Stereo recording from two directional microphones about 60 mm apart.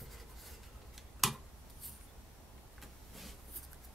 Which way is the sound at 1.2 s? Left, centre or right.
Centre.